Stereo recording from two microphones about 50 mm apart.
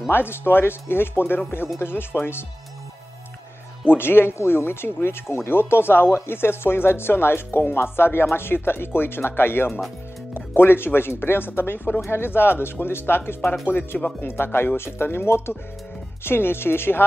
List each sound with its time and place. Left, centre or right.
0.1 s speech: left
3.9 s speech: left
13.7 s speech: left
14.2 s speech: left